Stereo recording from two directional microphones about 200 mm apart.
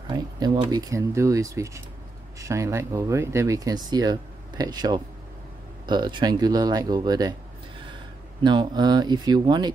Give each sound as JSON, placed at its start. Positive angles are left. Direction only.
{"t": 0.4, "sound": "speech", "side_deg": -20}
{"t": 8.4, "sound": "speech", "side_deg": -20}